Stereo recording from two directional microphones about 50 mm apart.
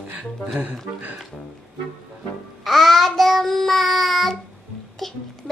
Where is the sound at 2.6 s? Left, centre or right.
Centre.